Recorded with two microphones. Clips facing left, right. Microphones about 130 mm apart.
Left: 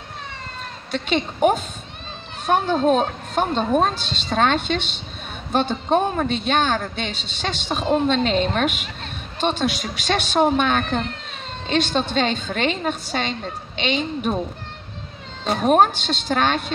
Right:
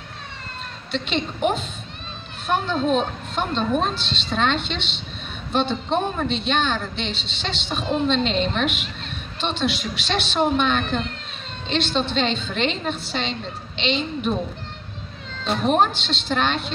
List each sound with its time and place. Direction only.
0.9 s a woman's voice: 50° left (ahead or behind)
15.4 s a woman's voice: 45° left (ahead or behind)